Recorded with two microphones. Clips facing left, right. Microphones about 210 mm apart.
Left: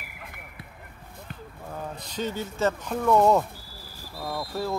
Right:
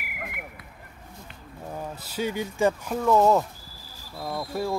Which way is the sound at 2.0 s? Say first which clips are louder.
Right 3 dB; 10° right (ahead or behind).